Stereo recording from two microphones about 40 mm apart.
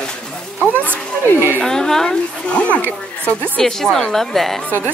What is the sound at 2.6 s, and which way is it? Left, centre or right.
Speech, left.